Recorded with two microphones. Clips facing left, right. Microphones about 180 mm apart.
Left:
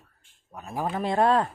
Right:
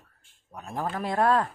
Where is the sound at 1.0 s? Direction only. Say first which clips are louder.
Left 2 dB; 25° left (ahead or behind).